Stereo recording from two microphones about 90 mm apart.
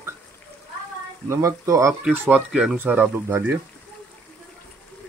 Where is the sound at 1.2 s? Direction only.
30° right (ahead or behind).